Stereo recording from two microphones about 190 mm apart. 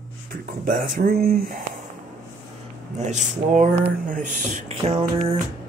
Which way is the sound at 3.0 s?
40° right (ahead or behind).